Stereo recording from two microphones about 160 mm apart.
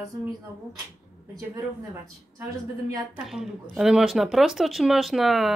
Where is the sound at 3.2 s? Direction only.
Centre (ahead or behind).